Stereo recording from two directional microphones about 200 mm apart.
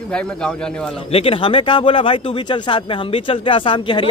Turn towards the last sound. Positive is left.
turn(degrees=25)  # may be behind; listen again after turning